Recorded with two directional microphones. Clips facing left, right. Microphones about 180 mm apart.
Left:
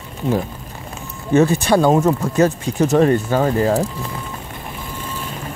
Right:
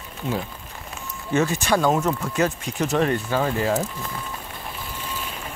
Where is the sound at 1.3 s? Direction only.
35° left (ahead or behind).